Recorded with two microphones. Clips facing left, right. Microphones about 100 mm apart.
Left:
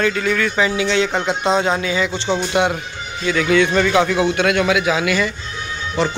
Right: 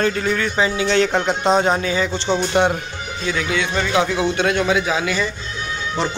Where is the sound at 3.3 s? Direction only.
25° right (ahead or behind).